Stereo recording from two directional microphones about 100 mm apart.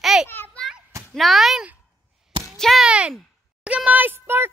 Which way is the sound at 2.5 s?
5° left (ahead or behind).